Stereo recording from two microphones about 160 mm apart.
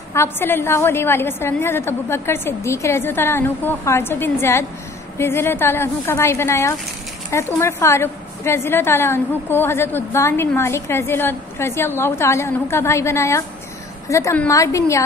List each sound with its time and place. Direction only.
0.1 s a woman's voice: 15° left (ahead or behind)